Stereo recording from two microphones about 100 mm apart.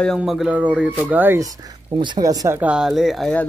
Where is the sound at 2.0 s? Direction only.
45° right (ahead or behind).